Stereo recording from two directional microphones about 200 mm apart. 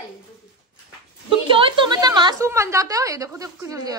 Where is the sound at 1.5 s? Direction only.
25° right (ahead or behind).